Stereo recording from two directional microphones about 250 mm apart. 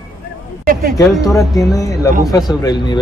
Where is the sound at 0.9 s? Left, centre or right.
Centre.